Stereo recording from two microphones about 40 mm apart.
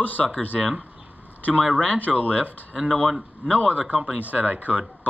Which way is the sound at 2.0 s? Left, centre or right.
Left.